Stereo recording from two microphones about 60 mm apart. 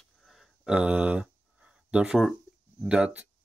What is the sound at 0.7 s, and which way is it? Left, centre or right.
Speech, centre.